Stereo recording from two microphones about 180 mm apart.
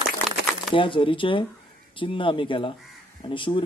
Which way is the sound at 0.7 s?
30° left (ahead or behind).